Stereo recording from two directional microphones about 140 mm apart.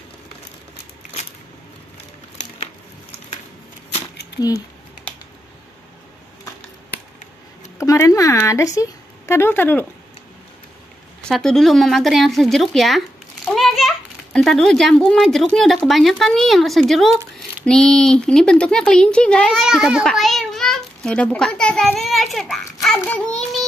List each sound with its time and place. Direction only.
7.8 s a sound: 20° left (ahead or behind)
8.4 s speech: 20° left (ahead or behind)
11.2 s speech: 5° left (ahead or behind)
13.6 s a sound: centre (ahead or behind)
15.5 s speech: centre (ahead or behind)
23.0 s child singing: 10° left (ahead or behind)